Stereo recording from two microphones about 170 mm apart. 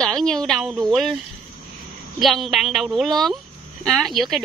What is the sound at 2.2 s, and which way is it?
A woman's voice, centre (ahead or behind).